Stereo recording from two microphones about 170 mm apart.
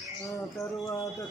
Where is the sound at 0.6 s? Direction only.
15° left (ahead or behind).